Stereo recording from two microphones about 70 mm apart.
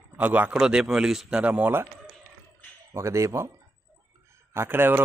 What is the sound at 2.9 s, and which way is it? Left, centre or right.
Speech, right.